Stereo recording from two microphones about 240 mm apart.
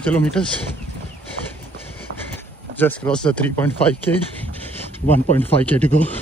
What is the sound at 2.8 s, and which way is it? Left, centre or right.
Speech, centre.